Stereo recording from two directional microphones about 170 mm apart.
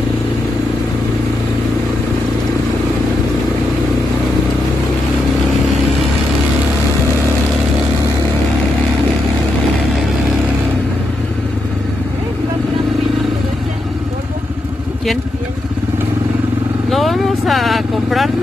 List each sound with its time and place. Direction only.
16.9 s vehicle: centre (ahead or behind)